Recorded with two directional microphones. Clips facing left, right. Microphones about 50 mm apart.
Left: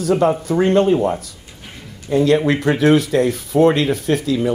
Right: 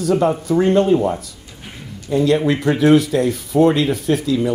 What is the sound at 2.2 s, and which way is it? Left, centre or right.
Speech, left.